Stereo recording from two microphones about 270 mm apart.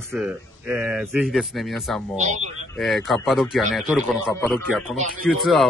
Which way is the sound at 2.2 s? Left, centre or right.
Right.